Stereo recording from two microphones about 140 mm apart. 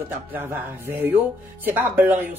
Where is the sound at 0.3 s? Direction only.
15° right (ahead or behind).